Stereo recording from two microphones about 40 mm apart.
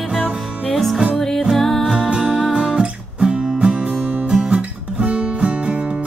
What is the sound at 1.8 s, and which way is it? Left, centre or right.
Music, right.